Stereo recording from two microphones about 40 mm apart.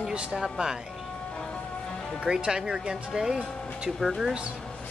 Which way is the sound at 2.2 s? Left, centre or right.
Centre.